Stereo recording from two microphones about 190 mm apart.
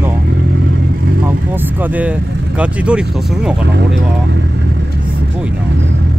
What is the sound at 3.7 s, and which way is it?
Speech, 65° right (ahead or behind).